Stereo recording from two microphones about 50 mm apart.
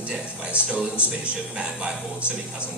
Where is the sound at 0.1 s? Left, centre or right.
Centre.